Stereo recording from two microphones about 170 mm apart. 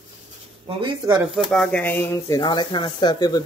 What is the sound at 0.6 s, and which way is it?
Speech, 30° right (ahead or behind).